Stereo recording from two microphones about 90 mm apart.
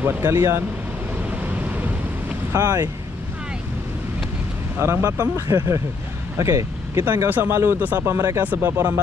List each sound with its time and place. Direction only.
0.0 s speech: 30° right (ahead or behind)
2.5 s speech: 35° right (ahead or behind)
4.7 s speech: 25° right (ahead or behind)
7.2 s speech: 20° right (ahead or behind)